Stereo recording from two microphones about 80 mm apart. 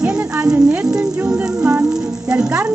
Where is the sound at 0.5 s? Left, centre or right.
Centre.